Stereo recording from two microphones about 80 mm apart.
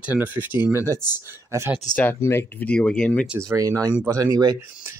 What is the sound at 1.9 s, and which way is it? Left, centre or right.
Speech, left.